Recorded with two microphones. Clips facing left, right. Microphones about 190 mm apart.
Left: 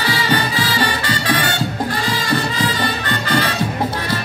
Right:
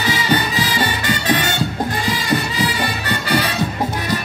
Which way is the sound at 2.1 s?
15° right (ahead or behind).